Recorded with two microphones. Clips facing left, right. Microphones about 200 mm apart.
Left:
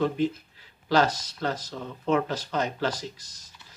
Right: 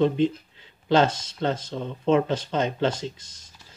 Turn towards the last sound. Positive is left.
turn(degrees=-25)  # may be behind; listen again after turning